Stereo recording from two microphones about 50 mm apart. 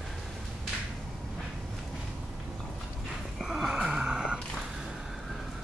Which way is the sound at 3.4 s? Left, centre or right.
Centre.